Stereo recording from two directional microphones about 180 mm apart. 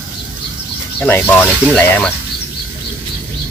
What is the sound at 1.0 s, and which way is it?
Speech, 10° left (ahead or behind).